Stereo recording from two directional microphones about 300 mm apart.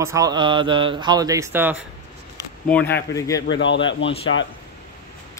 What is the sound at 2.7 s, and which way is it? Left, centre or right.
Speech, centre.